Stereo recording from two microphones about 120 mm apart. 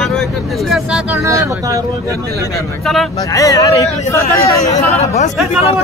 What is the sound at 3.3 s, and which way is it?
Speech, 30° left (ahead or behind).